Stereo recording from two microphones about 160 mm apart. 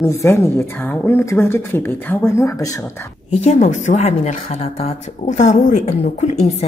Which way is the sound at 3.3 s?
45° left (ahead or behind).